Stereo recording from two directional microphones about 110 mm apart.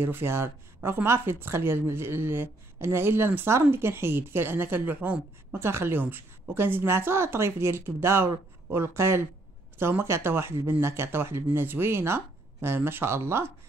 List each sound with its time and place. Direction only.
0.0 s speech: 20° right (ahead or behind)